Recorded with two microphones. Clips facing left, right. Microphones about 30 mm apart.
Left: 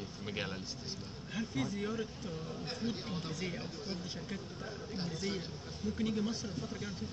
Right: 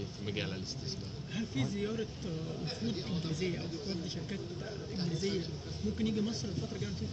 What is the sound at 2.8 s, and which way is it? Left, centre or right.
Speech, right.